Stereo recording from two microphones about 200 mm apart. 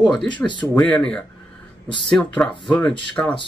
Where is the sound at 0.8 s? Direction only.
5° left (ahead or behind).